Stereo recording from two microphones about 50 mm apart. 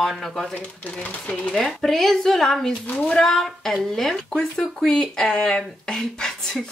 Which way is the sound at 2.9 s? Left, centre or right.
Left.